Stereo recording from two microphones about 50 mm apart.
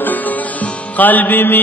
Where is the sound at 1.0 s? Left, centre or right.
Left.